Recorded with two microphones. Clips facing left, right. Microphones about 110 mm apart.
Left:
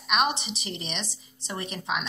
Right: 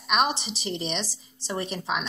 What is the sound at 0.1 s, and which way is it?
Speech, centre (ahead or behind).